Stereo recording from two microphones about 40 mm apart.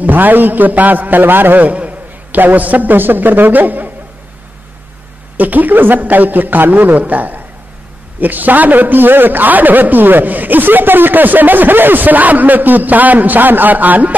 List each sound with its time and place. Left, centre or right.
0.0 s a man's voice: right
1.2 s a man's voice: right
5.4 s a man's voice: right